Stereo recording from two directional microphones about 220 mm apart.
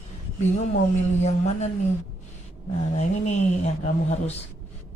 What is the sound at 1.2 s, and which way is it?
Speech, 30° left (ahead or behind).